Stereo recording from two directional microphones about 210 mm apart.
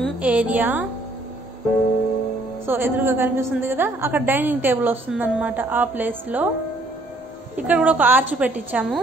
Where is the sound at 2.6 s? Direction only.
10° right (ahead or behind).